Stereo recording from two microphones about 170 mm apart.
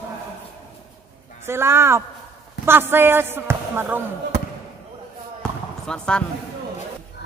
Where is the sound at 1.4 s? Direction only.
15° right (ahead or behind).